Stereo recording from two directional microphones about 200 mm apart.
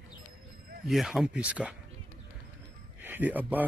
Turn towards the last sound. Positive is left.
turn(degrees=-10)  # may be behind; listen again after turning